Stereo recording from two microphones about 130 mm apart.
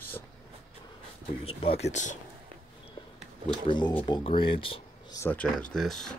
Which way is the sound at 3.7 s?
35° left (ahead or behind).